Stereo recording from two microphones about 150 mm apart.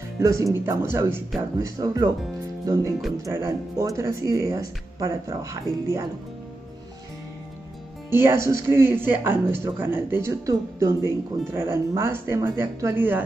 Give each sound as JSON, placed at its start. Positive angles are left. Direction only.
{"t": 0.2, "sound": "speech", "side_deg": -20}
{"t": 8.1, "sound": "speech", "side_deg": -15}